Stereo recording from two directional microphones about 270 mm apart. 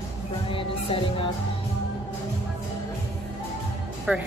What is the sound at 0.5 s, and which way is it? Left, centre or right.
Music, centre.